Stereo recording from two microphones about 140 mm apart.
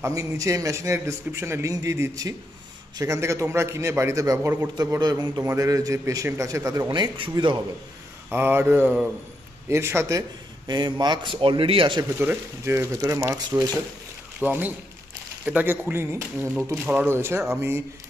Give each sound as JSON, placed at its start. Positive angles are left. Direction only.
{"t": 0.0, "sound": "a man's voice", "side_deg": -25}
{"t": 6.9, "sound": "a man's voice", "side_deg": -35}
{"t": 8.3, "sound": "a man's voice", "side_deg": -15}
{"t": 10.7, "sound": "a man's voice", "side_deg": -30}
{"t": 12.2, "sound": "speech", "side_deg": -15}